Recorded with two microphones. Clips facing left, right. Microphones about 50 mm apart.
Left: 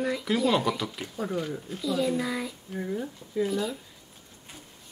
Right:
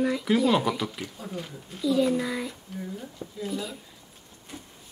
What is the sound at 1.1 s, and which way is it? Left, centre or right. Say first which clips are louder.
Speech: left 6 dB; left.